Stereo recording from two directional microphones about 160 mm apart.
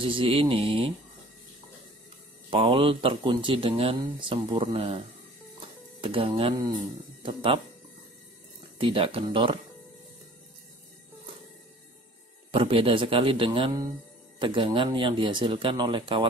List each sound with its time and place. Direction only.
0.0 s speech: 35° right (ahead or behind)
2.5 s speech: 35° right (ahead or behind)
8.7 s speech: 35° right (ahead or behind)
12.4 s speech: 35° right (ahead or behind)